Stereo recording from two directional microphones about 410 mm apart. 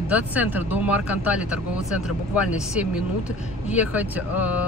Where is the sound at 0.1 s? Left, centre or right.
Centre.